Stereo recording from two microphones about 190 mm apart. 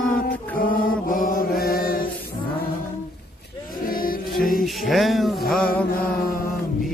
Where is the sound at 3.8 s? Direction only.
50° left (ahead or behind).